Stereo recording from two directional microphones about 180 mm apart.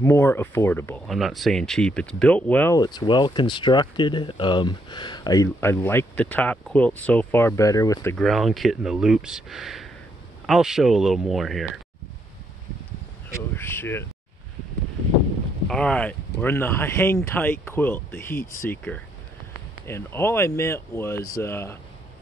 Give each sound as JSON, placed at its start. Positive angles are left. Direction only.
{"t": 0.0, "sound": "speech", "side_deg": 15}
{"t": 1.0, "sound": "speech", "side_deg": 0}
{"t": 2.8, "sound": "speech", "side_deg": 25}
{"t": 8.2, "sound": "speech", "side_deg": 0}
{"t": 13.3, "sound": "speech", "side_deg": 10}
{"t": 15.7, "sound": "speech", "side_deg": 5}